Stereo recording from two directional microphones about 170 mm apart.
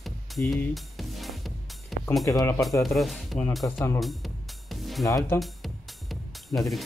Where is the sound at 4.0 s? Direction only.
Centre (ahead or behind).